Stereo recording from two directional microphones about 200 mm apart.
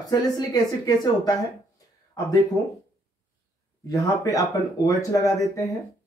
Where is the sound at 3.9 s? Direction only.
15° left (ahead or behind).